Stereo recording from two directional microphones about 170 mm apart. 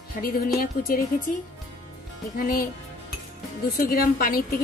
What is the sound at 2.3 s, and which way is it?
Speech, 55° left (ahead or behind).